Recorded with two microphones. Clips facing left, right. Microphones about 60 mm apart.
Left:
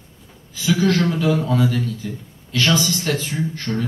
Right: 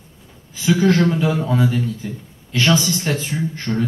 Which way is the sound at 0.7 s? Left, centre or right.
Right.